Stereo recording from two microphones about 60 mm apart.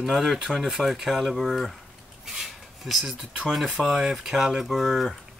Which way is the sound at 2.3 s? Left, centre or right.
Centre.